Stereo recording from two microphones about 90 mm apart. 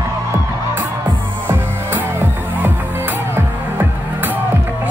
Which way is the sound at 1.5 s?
25° right (ahead or behind).